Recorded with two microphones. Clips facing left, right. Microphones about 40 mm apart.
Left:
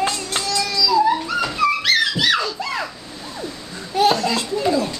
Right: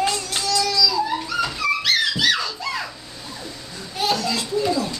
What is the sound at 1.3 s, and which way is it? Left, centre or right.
Dog, left.